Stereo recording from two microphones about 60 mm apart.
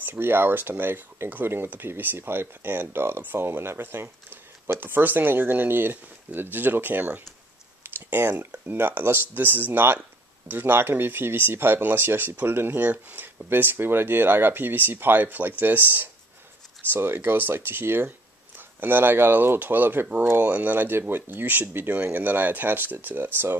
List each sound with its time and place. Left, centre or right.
0.0 s speech: right
7.8 s a sound: right
8.5 s speech: right